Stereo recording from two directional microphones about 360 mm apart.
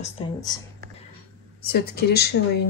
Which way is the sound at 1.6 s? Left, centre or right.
Left.